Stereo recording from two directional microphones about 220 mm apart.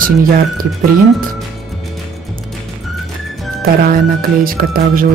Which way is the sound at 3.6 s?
45° right (ahead or behind).